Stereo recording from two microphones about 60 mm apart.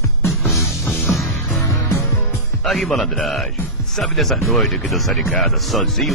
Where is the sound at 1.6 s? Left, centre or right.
Left.